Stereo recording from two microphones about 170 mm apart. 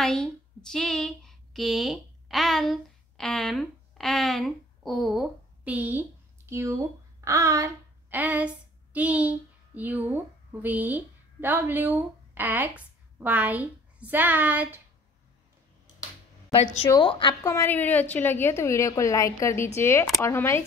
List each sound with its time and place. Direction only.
0.0 s a woman's voice: 5° left (ahead or behind)
16.9 s a woman's voice: 30° left (ahead or behind)
17.4 s a woman's voice: 15° left (ahead or behind)